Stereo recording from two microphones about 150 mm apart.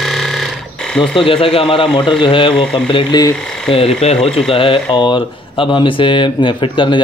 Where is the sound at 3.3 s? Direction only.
5° left (ahead or behind).